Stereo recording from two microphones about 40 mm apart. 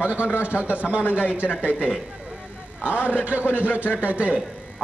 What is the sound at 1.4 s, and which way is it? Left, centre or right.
Speech, centre.